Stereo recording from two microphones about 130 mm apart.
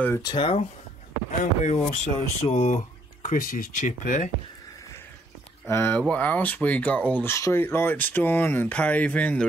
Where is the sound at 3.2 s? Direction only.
90° left.